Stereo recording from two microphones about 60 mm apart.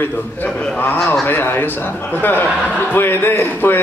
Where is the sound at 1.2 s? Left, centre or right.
Left.